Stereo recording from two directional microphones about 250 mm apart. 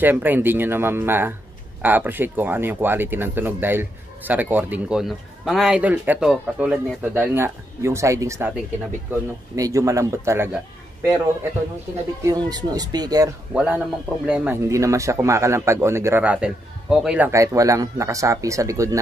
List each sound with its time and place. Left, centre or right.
0.0 s speech: centre
12.2 s speech: centre
13.5 s speech: centre